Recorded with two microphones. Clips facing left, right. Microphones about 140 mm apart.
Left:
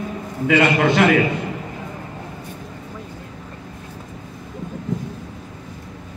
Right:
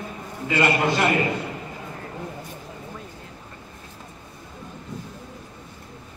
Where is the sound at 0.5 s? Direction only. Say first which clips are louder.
Left 5 dB; 85° left.